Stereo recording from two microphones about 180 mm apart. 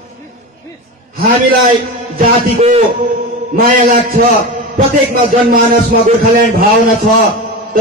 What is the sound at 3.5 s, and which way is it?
A man's voice, 55° right (ahead or behind).